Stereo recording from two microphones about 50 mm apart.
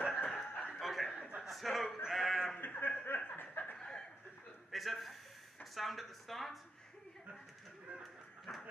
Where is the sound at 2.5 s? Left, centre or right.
Left.